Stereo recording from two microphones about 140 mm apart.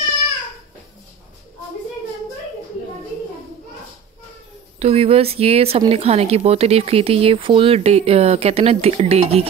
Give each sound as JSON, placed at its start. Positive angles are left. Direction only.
{"t": 4.7, "sound": "speech", "side_deg": -45}